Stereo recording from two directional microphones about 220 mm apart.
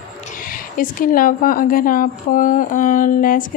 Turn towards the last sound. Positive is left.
turn(degrees=40)  # may be behind; listen again after turning